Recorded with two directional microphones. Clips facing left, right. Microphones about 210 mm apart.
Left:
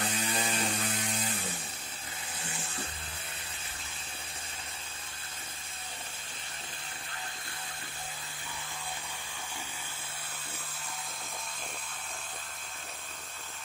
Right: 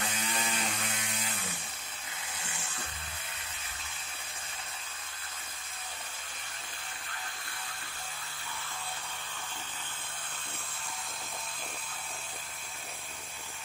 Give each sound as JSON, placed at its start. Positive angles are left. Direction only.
{"t": 0.1, "sound": "mains hum", "side_deg": 35}